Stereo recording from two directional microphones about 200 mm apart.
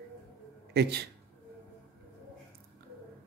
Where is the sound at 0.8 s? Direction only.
55° right (ahead or behind).